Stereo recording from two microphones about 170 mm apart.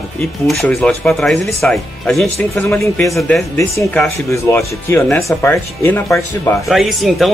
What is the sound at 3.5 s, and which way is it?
Speech, 15° left (ahead or behind).